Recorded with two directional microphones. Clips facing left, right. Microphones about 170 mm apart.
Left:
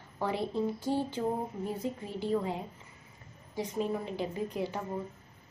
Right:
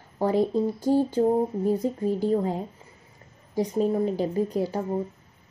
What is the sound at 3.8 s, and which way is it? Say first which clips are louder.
A woman's voice: right 9 dB; 40° right (ahead or behind).